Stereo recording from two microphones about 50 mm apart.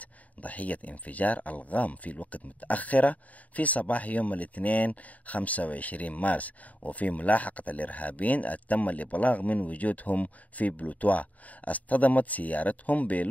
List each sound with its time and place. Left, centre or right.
0.0 s speech: left